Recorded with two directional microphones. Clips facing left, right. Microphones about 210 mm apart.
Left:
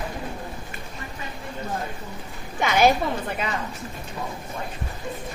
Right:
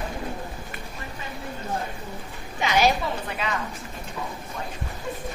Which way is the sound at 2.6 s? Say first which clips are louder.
Left 3 dB; 55° left (ahead or behind).